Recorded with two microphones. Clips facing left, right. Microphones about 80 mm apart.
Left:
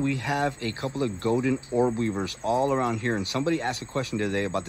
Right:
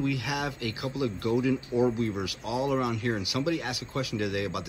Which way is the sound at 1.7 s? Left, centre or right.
Left.